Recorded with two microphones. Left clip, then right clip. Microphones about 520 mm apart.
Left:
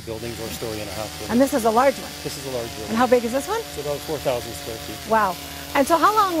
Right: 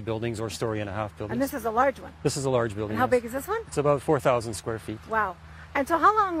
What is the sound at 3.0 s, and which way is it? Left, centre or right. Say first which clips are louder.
Speech: left 6 dB; left.